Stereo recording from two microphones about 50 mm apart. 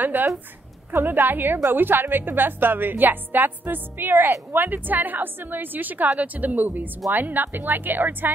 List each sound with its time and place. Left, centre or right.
0.0 s a woman's voice: right